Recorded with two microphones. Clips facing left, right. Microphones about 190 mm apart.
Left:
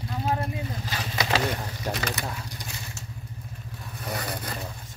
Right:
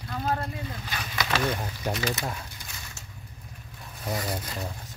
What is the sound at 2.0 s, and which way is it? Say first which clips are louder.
Speech: right 1 dB; 60° left (ahead or behind).